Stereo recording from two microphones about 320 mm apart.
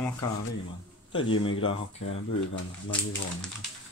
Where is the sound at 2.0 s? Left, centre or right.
Left.